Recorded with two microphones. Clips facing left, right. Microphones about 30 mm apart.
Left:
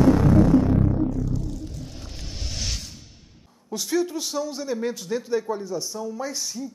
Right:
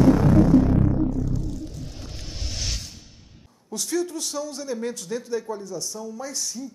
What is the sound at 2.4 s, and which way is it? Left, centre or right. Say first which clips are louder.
Music: even; centre.